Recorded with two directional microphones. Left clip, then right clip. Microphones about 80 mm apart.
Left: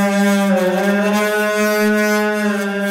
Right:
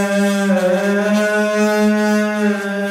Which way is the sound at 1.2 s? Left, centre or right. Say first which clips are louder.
Even; centre.